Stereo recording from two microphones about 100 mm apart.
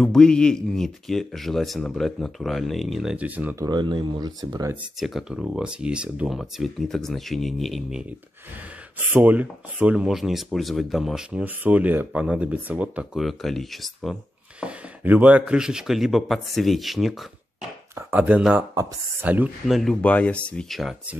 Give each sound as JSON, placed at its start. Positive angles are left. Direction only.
{"t": 0.0, "sound": "speech", "side_deg": 5}
{"t": 3.2, "sound": "speech", "side_deg": -15}
{"t": 3.7, "sound": "speech", "side_deg": -50}
{"t": 5.0, "sound": "speech", "side_deg": 0}
{"t": 9.1, "sound": "speech", "side_deg": -15}
{"t": 11.4, "sound": "speech", "side_deg": -15}
{"t": 13.2, "sound": "speech", "side_deg": 0}
{"t": 14.6, "sound": "speech", "side_deg": -15}
{"t": 18.1, "sound": "speech", "side_deg": -15}
{"t": 19.7, "sound": "speech", "side_deg": 0}
{"t": 20.0, "sound": "speech", "side_deg": 15}